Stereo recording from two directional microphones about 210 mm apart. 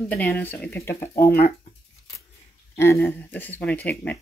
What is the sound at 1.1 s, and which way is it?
Speech, 45° left (ahead or behind).